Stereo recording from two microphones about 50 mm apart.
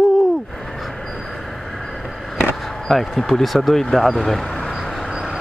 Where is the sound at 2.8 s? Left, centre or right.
Centre.